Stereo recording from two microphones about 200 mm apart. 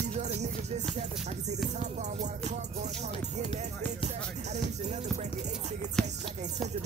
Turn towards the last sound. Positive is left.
turn(degrees=5)  # may be behind; listen again after turning